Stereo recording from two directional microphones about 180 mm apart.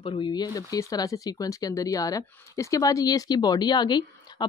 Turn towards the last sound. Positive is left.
turn(degrees=25)  # may be behind; listen again after turning